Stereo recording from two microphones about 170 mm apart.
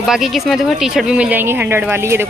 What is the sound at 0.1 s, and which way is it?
Speech, centre (ahead or behind).